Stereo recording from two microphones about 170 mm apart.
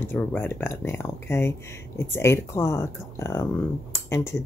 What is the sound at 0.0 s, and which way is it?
Speech, 10° left (ahead or behind).